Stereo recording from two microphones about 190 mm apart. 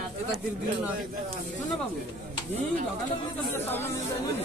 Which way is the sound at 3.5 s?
10° left (ahead or behind).